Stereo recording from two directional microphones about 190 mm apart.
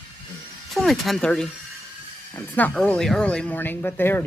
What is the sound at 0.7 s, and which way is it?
Speech, centre (ahead or behind).